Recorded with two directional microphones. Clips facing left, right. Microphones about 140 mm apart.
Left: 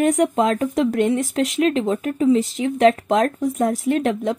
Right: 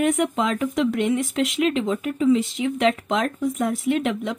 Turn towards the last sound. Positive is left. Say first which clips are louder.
# left 3 dB
turn(degrees=35)  # may be behind; listen again after turning